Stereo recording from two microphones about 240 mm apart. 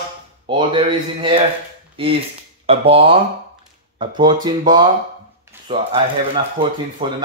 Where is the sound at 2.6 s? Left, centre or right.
Right.